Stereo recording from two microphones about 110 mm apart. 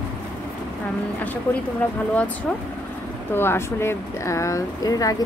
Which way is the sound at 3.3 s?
20° left (ahead or behind).